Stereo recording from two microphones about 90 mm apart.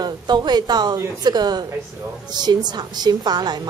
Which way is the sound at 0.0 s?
55° right (ahead or behind).